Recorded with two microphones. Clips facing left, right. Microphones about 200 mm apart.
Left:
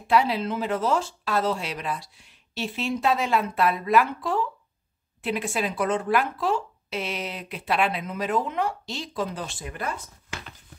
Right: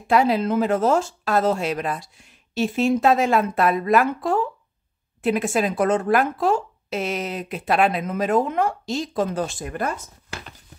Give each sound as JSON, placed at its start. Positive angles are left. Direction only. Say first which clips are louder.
{"t": 0.1, "sound": "speech", "louder": "right 4 dB", "side_deg": -45}